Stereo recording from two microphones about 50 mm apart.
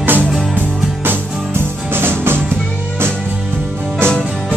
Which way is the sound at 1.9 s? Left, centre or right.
Right.